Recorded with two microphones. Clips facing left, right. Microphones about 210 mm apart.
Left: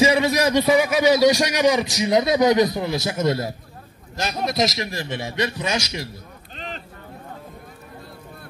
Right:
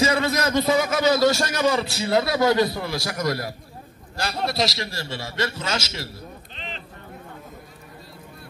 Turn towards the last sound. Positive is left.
turn(degrees=45)  # may be behind; listen again after turning